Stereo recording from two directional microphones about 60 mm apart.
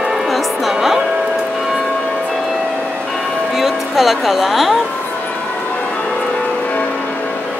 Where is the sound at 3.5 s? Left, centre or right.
Centre.